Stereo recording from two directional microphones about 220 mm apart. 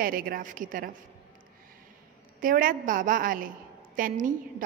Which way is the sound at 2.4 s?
40° right (ahead or behind).